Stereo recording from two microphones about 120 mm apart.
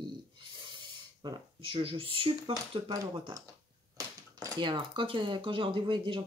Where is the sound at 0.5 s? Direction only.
40° right (ahead or behind).